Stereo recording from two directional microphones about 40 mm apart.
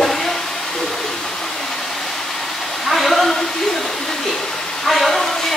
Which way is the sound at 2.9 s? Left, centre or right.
Centre.